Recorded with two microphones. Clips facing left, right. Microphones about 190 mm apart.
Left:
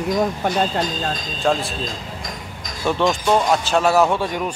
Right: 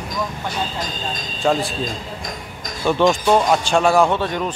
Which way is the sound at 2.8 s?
Centre (ahead or behind).